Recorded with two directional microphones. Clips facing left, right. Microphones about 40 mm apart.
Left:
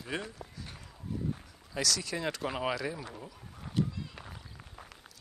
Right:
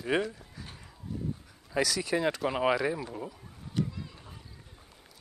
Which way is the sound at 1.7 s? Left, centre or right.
Centre.